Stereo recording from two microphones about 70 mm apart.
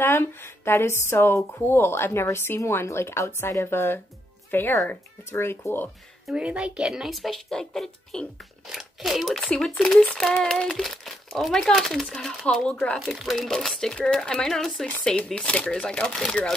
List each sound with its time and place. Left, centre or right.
0.0 s speech: left
6.3 s speech: centre
6.9 s a child's voice: centre
9.4 s speech: centre